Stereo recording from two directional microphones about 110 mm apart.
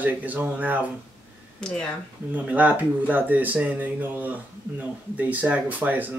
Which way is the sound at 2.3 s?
15° right (ahead or behind).